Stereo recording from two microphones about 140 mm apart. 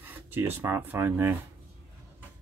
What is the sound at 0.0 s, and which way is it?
Speech, 15° right (ahead or behind).